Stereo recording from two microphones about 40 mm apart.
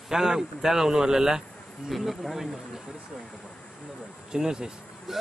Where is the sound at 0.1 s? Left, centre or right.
Centre.